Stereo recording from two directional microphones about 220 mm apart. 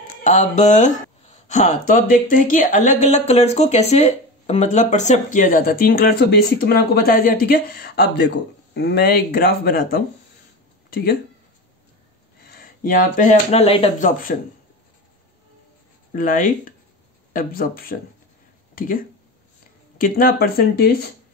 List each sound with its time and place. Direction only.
0.2 s speech: 35° left (ahead or behind)
12.4 s speech: 45° left (ahead or behind)
16.1 s speech: 35° left (ahead or behind)